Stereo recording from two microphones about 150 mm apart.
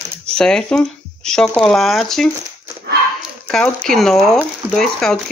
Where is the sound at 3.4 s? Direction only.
5° left (ahead or behind).